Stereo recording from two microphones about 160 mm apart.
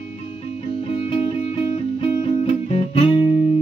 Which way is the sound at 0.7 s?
40° left (ahead or behind).